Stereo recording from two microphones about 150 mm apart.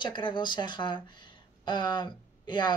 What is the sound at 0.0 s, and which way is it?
Speech, 30° left (ahead or behind).